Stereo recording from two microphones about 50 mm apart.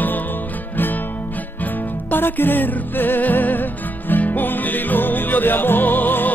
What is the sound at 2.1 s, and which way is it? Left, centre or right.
Music, left.